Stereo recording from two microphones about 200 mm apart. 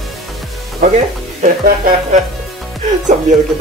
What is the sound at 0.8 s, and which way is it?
Speech, 40° right (ahead or behind).